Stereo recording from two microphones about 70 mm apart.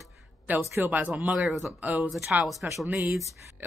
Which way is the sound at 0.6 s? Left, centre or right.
Right.